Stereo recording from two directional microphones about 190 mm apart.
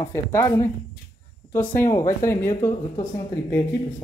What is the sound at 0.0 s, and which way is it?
Speech, 15° left (ahead or behind).